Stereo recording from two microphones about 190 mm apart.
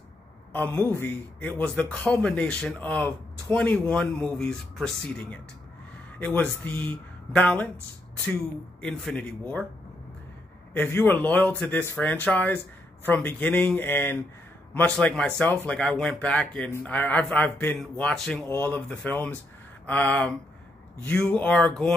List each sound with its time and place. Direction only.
0.5 s a man's voice: 10° left (ahead or behind)
8.8 s a man's voice: 5° left (ahead or behind)
10.7 s a man's voice: 10° left (ahead or behind)